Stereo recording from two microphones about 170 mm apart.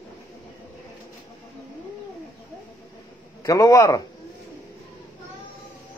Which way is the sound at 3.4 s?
20° left (ahead or behind).